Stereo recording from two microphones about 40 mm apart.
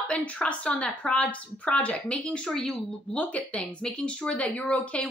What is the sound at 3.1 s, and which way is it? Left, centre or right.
Speech, left.